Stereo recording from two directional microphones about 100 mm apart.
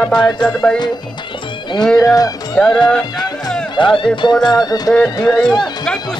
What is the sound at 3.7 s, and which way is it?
Speech, 55° left (ahead or behind).